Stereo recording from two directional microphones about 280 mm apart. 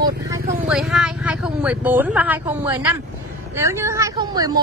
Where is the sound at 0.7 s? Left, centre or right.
Centre.